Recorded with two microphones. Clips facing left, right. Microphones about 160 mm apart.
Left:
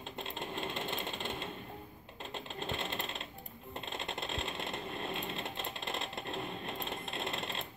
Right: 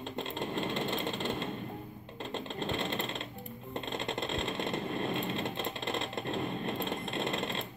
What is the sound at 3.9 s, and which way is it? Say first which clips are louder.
Vehicle: right 5 dB; 5° left (ahead or behind).